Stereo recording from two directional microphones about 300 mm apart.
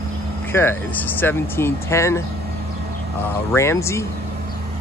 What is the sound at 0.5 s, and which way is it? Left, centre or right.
Speech, centre.